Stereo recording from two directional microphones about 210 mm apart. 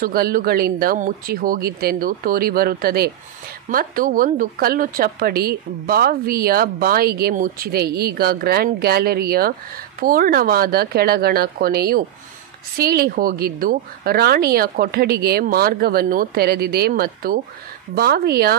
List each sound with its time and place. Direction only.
0.0 s speech: 45° right (ahead or behind)